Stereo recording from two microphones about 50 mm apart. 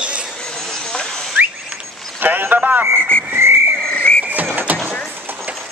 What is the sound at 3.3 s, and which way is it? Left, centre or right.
Whistling, right.